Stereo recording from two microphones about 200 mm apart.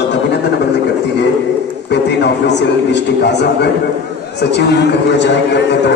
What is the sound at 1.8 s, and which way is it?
A man's voice, 60° left (ahead or behind).